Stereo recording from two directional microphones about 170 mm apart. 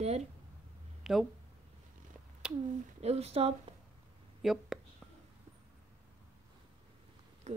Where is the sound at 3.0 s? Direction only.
35° right (ahead or behind).